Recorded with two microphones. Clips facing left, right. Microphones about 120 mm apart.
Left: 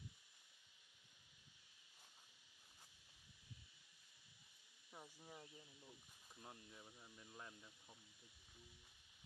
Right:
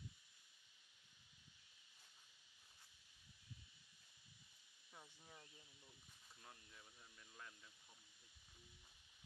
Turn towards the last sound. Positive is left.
turn(degrees=20)  # may be behind; listen again after turning